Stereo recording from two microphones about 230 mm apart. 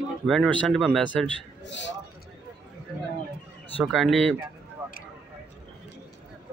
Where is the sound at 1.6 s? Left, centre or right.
Left.